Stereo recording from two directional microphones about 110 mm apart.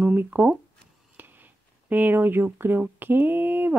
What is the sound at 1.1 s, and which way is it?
Speech, 15° right (ahead or behind).